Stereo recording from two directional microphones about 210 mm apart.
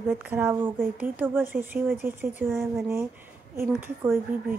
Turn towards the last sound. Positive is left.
turn(degrees=-10)  # may be behind; listen again after turning